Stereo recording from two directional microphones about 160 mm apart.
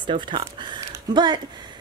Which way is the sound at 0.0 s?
30° right (ahead or behind).